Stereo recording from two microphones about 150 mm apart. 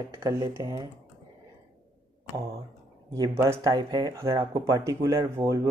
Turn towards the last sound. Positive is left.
turn(degrees=-20)  # may be behind; listen again after turning